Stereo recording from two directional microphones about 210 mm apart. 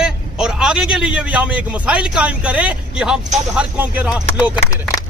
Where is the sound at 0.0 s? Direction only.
5° right (ahead or behind).